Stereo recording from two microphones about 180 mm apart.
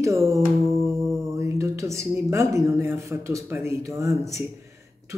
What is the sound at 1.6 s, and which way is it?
A woman's voice, 15° right (ahead or behind).